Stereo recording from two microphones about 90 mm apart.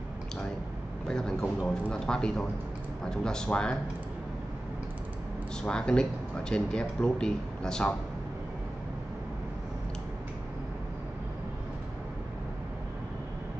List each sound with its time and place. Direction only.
1.0 s a sound: 5° left (ahead or behind)
1.7 s speech: 10° left (ahead or behind)
5.6 s speech: 10° left (ahead or behind)